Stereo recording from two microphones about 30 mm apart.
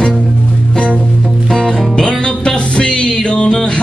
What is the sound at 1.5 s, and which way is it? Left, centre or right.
Music, left.